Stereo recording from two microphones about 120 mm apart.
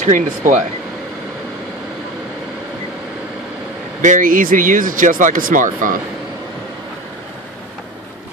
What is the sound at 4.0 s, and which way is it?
Speech, 90° right.